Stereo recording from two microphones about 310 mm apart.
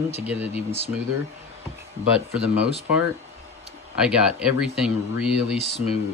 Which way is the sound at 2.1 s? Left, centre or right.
Centre.